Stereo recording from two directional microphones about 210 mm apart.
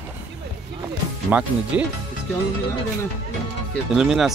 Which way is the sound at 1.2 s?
5° right (ahead or behind).